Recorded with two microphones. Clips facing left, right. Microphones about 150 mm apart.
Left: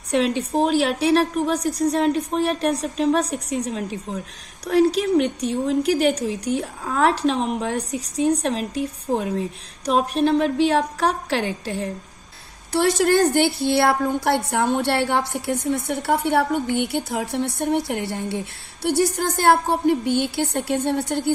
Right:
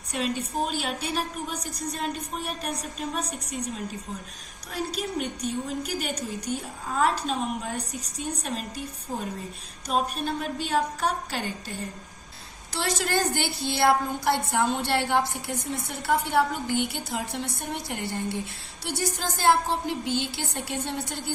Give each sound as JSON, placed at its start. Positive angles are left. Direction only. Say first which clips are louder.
{"t": 0.1, "sound": "a woman's voice", "louder": "left 9 dB", "side_deg": 75}
{"t": 4.9, "sound": "a woman's voice", "louder": "left 11 dB", "side_deg": 75}
{"t": 9.8, "sound": "speech", "louder": "left 8 dB", "side_deg": 80}
{"t": 12.7, "sound": "a woman's voice", "louder": "left 9 dB", "side_deg": 55}